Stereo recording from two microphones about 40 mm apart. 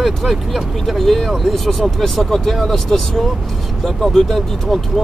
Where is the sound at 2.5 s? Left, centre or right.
Centre.